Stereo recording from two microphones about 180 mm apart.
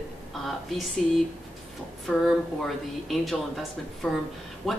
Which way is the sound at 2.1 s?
Centre (ahead or behind).